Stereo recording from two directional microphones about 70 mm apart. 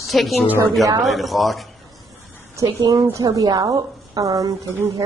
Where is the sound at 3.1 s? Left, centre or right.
Right.